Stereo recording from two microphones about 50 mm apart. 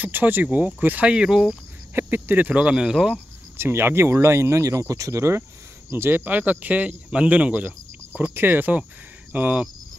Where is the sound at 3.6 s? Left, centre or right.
Right.